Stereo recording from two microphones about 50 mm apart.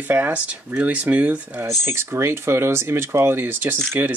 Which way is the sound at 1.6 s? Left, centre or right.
Right.